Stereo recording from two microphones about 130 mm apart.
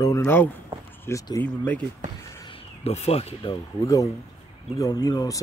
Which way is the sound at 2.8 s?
55° left (ahead or behind).